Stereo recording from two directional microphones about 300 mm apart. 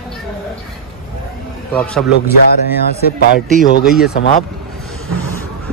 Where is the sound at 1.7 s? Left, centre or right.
Centre.